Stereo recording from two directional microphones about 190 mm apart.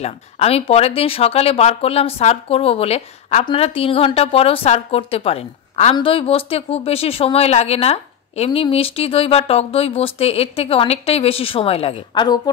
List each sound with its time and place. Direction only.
0.0 s a woman's voice: 35° left (ahead or behind)